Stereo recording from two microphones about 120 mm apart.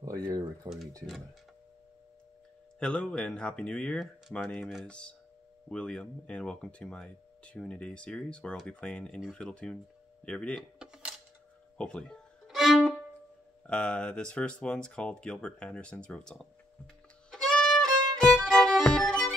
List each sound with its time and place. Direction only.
0.0 s speech: 30° right (ahead or behind)
2.8 s speech: 10° left (ahead or behind)
10.8 s a sound: 5° right (ahead or behind)
11.8 s violin: 5° left (ahead or behind)
13.7 s speech: 10° left (ahead or behind)
18.2 s music: 5° left (ahead or behind)